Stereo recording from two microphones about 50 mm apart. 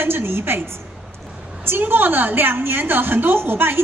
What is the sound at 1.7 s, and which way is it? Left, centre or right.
A woman's voice, right.